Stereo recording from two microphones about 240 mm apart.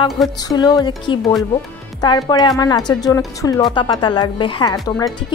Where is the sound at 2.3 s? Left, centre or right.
Centre.